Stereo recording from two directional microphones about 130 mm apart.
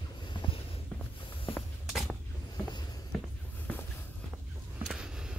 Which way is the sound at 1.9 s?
Centre (ahead or behind).